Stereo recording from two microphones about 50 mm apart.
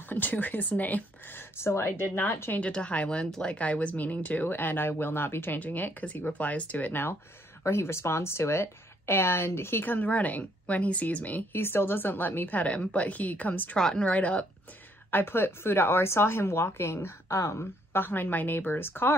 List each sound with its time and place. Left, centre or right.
0.1 s a woman's voice: left
1.6 s speech: left
2.6 s speech: left
4.5 s a woman's voice: left
6.9 s speech: left
7.6 s speech: left
9.8 s a woman's voice: left
11.5 s a woman's voice: left
15.0 s speech: left
17.9 s speech: left